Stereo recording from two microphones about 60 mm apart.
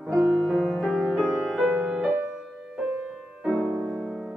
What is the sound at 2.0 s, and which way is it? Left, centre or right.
Music, right.